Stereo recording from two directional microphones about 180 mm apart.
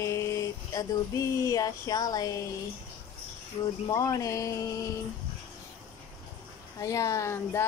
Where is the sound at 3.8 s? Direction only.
20° left (ahead or behind).